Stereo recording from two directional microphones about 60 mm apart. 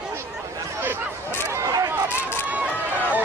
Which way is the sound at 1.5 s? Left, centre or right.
Right.